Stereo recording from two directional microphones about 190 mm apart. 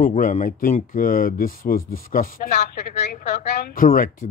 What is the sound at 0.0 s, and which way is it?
Speech, 45° left (ahead or behind).